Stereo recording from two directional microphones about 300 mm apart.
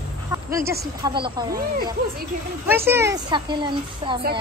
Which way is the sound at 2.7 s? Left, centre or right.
Centre.